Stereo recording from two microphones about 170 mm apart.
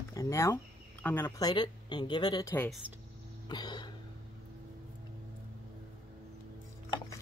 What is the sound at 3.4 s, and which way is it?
Throat clearing, 25° left (ahead or behind).